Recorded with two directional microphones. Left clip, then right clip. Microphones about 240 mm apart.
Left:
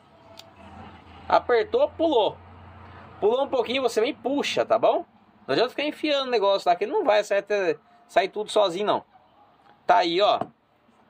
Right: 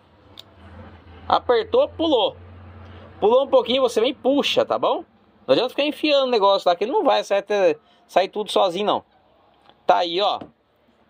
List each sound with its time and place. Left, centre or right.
1.2 s a man's voice: centre